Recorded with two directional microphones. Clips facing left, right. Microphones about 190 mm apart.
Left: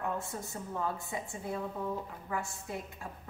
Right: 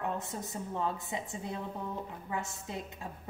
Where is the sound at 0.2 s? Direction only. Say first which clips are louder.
Right 1 dB; 20° right (ahead or behind).